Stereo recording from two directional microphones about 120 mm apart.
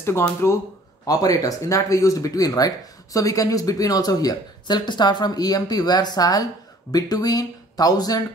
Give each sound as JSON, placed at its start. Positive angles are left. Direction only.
{"t": 0.4, "sound": "speech", "side_deg": 20}